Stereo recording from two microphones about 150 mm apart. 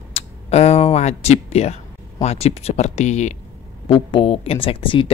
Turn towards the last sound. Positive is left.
turn(degrees=35)  # may be behind; listen again after turning